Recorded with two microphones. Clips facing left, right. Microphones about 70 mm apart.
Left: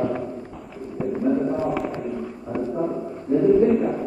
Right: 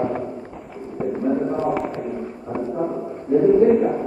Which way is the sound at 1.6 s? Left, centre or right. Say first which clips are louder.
Right 2 dB; centre.